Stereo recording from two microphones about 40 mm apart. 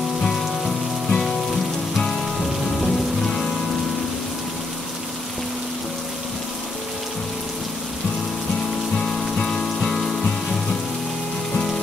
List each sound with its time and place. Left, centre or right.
0.2 s rain on surface: centre
2.8 s rain on surface: centre
8.9 s music: centre
11.5 s a sound: centre